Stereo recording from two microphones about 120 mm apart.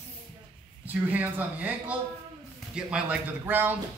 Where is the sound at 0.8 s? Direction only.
15° right (ahead or behind).